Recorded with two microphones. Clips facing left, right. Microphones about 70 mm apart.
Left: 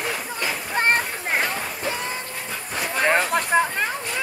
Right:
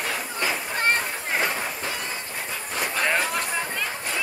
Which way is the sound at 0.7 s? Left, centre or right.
Left.